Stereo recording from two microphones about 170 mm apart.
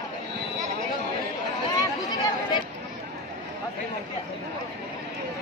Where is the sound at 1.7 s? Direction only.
20° left (ahead or behind).